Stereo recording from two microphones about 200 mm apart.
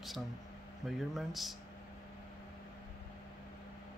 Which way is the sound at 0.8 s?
Centre (ahead or behind).